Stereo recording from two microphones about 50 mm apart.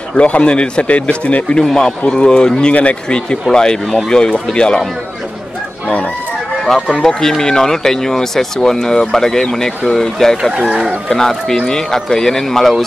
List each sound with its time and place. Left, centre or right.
0.1 s a man's voice: left
1.6 s a man's voice: centre
6.7 s speech: centre